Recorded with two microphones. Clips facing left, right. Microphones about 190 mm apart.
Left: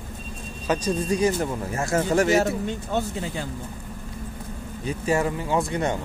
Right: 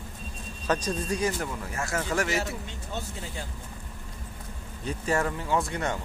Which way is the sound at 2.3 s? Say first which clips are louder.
Left 10 dB; 45° left (ahead or behind).